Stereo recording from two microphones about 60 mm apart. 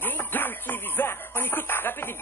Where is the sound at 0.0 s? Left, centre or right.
Left.